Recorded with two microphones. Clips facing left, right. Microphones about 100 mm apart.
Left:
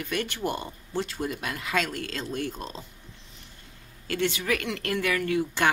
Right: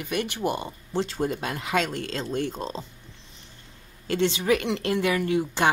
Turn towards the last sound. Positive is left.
turn(degrees=-20)  # may be behind; listen again after turning